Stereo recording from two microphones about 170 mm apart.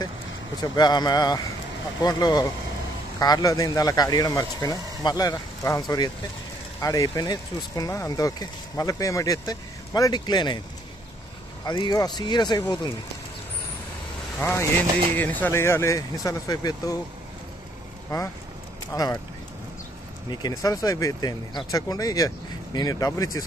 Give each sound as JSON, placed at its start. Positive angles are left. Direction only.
{"t": 0.6, "sound": "speech", "side_deg": 25}
{"t": 11.6, "sound": "speech", "side_deg": 25}
{"t": 14.4, "sound": "speech", "side_deg": 15}
{"t": 18.9, "sound": "speech", "side_deg": 20}
{"t": 20.2, "sound": "speech", "side_deg": 20}